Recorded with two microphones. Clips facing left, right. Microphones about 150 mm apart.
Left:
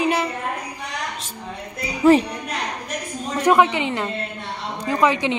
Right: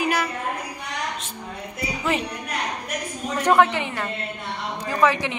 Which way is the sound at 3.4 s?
15° left (ahead or behind).